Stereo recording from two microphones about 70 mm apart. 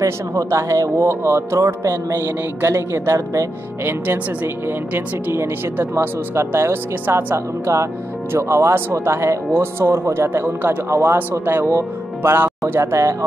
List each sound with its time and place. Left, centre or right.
0.0 s speech: right
4.6 s speech: right
10.9 s speech: right